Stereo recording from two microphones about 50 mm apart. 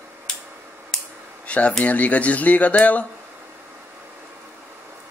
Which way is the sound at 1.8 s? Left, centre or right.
Left.